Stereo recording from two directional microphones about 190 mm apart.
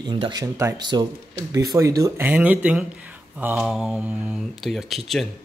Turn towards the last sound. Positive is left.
turn(degrees=0)  # may be behind; listen again after turning